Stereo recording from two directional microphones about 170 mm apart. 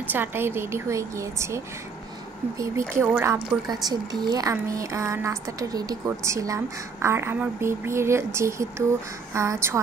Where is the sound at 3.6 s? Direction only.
25° right (ahead or behind).